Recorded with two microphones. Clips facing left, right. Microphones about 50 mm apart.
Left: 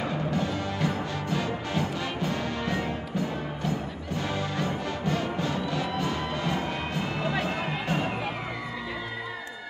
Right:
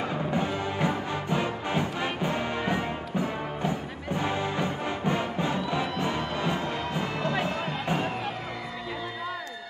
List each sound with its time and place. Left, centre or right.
0.3 s music: right
7.3 s music: centre